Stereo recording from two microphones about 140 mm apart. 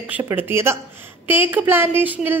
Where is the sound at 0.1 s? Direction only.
20° right (ahead or behind).